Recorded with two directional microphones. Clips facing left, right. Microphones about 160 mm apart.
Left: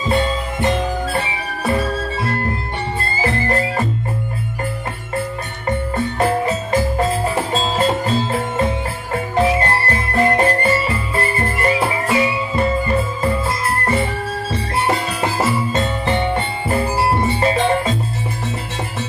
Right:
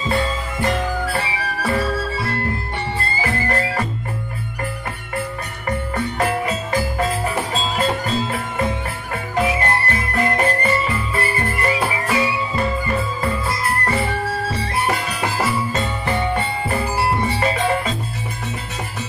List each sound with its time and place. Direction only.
0.1 s music: 20° left (ahead or behind)
5.7 s music: 25° left (ahead or behind)
14.9 s jingle bell: 25° left (ahead or behind)